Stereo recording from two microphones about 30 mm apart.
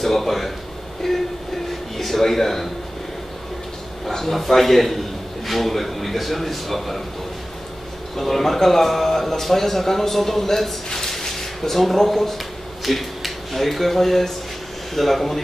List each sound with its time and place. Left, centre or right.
0.0 s a sound: centre
1.0 s train: centre
2.0 s speech: centre
4.1 s a man's voice: centre
8.2 s a man's voice: centre